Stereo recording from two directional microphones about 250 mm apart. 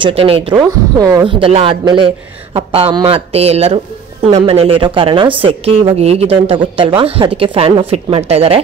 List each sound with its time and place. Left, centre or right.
0.0 s speech: right